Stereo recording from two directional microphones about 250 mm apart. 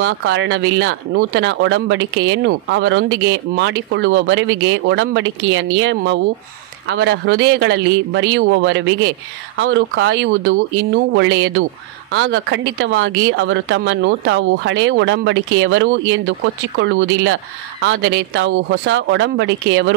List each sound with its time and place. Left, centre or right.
0.0 s speech: right